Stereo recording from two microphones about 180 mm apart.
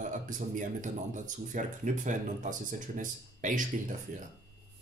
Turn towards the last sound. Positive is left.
turn(degrees=-45)  # may be behind; listen again after turning